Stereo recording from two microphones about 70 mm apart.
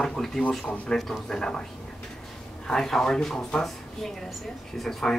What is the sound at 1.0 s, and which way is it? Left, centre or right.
Speech, centre.